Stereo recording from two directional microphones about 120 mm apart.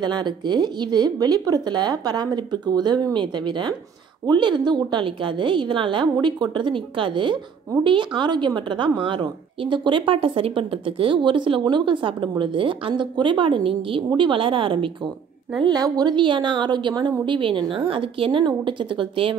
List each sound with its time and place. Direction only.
0.0 s a woman's voice: 40° right (ahead or behind)
15.6 s a woman's voice: 35° right (ahead or behind)